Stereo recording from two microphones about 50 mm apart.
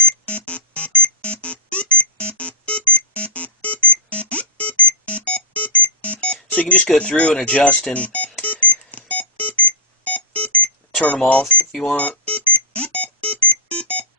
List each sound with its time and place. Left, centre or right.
0.0 s music: left
7.0 s speech: left
7.9 s beep: left
11.2 s speech: left
11.9 s alarm clock: left